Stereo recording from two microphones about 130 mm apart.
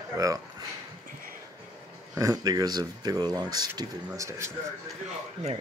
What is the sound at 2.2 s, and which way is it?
Speech, 25° right (ahead or behind).